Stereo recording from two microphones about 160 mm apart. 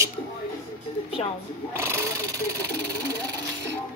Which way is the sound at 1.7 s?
15° right (ahead or behind).